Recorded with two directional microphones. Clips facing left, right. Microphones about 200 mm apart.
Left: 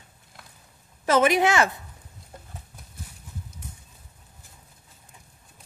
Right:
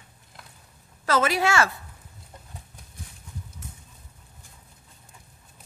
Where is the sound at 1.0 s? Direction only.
20° left (ahead or behind).